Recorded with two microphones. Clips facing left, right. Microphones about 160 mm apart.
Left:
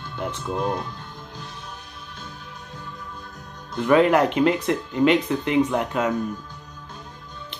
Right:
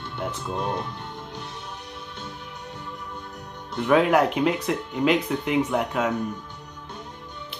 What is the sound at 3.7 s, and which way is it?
Speech, centre (ahead or behind).